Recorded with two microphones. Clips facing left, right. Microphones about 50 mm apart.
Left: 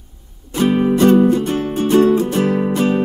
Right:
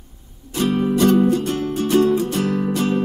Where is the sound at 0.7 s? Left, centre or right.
Left.